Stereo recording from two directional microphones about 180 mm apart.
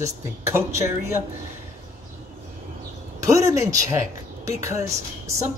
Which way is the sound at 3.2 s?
15° right (ahead or behind).